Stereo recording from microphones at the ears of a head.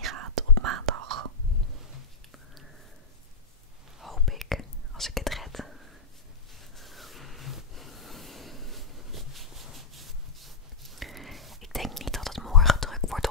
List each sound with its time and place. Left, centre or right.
0.0 s whispering: right
4.0 s whispering: centre
6.8 s a sound: centre
11.0 s whispering: centre